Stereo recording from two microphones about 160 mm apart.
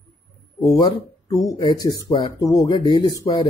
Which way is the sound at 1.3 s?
20° left (ahead or behind).